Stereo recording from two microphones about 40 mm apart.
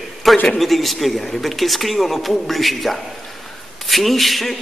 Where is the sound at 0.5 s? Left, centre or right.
Centre.